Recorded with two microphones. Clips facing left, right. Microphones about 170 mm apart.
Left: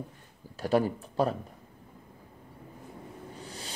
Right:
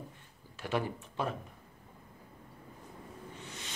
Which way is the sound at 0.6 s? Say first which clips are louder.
Left 8 dB; 40° left (ahead or behind).